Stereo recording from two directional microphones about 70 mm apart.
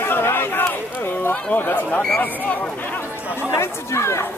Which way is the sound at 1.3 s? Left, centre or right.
Left.